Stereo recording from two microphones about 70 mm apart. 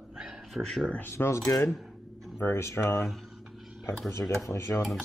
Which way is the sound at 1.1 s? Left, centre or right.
Left.